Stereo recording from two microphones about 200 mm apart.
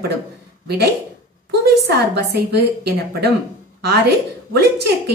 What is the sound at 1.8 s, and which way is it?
A woman's voice, 55° right (ahead or behind).